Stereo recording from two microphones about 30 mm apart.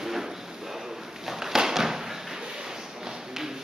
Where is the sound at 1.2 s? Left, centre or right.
Centre.